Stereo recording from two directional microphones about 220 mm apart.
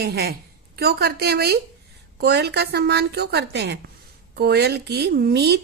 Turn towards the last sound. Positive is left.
turn(degrees=-50)  # may be behind; listen again after turning